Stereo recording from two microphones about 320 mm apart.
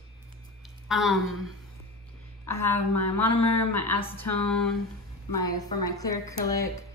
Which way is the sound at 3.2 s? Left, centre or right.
Left.